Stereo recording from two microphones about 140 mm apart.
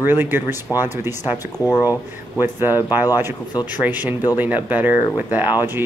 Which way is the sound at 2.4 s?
15° right (ahead or behind).